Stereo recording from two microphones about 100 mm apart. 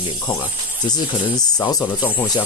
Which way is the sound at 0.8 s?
40° left (ahead or behind).